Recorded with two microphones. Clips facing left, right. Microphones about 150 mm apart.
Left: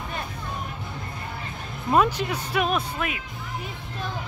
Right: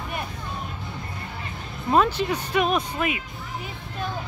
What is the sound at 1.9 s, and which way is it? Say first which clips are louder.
Speech: right 1 dB; 10° left (ahead or behind).